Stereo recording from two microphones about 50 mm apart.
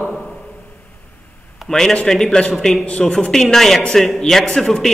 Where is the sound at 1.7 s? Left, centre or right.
Centre.